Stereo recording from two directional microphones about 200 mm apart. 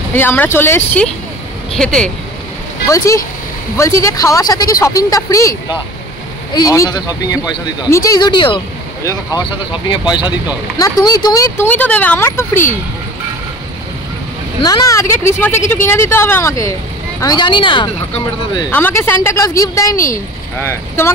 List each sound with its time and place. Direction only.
0.1 s speech: 10° left (ahead or behind)
2.9 s speech: 15° left (ahead or behind)
14.6 s speech: 15° left (ahead or behind)
18.7 s speech: 10° left (ahead or behind)